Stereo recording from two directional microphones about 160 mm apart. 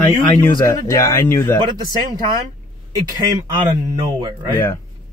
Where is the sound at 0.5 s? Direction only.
20° left (ahead or behind).